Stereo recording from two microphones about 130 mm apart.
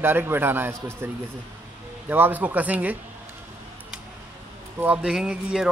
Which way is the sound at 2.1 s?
15° right (ahead or behind).